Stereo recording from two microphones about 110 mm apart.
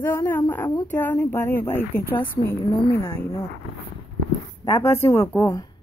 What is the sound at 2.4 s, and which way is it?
Speech, 30° left (ahead or behind).